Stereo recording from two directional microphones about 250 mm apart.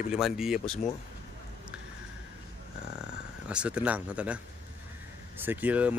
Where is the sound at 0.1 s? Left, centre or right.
Centre.